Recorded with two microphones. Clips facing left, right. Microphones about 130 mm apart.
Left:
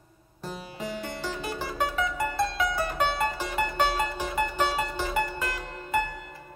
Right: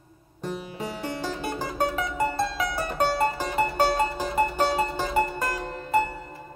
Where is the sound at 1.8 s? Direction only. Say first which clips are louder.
Right 3 dB; 35° right (ahead or behind).